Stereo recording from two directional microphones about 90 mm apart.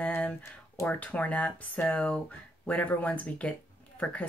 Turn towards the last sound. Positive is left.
turn(degrees=15)  # may be behind; listen again after turning